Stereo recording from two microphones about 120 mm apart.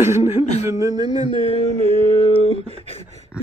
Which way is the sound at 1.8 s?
55° right (ahead or behind).